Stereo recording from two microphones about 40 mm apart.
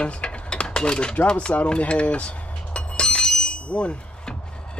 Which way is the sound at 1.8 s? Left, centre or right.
Left.